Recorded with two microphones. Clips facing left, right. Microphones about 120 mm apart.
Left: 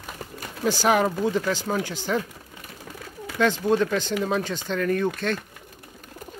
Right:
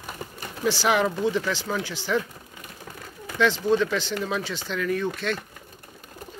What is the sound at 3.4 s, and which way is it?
Speech, 45° left (ahead or behind).